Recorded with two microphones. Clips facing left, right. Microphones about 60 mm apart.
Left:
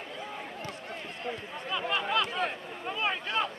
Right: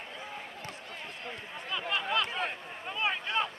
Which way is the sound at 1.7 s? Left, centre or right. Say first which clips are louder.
Left 2 dB; centre.